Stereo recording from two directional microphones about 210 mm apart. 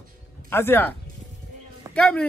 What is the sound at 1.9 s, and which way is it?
Speech, 5° left (ahead or behind).